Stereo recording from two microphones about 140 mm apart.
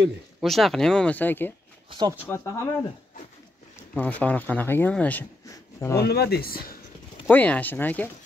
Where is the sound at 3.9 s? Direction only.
10° left (ahead or behind).